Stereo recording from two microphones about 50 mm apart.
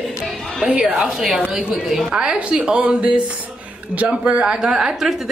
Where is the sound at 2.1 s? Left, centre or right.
Centre.